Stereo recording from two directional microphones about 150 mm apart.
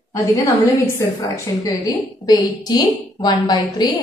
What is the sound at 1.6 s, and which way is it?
A woman's voice, 25° left (ahead or behind).